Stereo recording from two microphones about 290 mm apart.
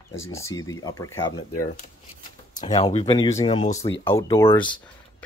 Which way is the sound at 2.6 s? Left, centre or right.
Centre.